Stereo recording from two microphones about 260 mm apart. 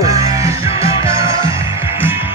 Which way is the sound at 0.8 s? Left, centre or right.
Centre.